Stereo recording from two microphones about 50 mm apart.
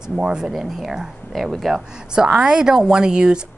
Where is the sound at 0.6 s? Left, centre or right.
Centre.